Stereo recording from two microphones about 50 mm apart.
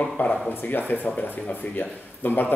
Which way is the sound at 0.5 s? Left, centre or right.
Left.